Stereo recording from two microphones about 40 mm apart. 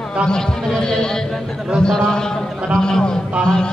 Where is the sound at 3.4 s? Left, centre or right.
Centre.